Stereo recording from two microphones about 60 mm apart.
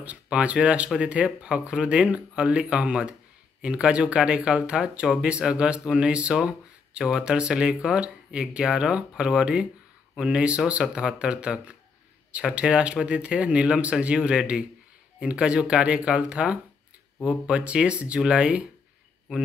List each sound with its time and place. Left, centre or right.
0.0 s speech: right